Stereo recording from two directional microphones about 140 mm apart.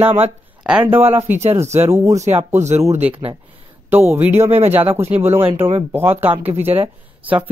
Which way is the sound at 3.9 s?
15° right (ahead or behind).